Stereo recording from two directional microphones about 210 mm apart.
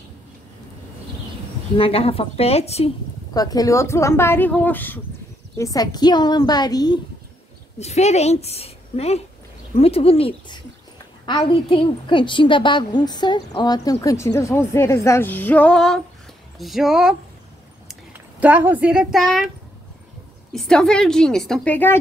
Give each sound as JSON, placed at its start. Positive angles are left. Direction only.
{"t": 1.8, "sound": "a woman's voice", "side_deg": 25}
{"t": 3.3, "sound": "a woman's voice", "side_deg": 15}
{"t": 7.8, "sound": "a woman's voice", "side_deg": 30}
{"t": 20.5, "sound": "a woman's voice", "side_deg": 0}